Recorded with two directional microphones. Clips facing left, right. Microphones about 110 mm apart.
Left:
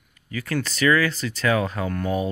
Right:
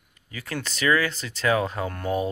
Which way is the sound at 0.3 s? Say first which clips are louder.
Left 6 dB; 20° right (ahead or behind).